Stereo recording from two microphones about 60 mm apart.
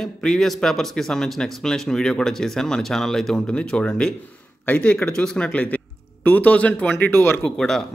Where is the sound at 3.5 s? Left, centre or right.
Centre.